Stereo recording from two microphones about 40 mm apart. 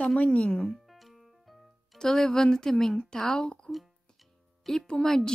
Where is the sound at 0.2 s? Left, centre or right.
Left.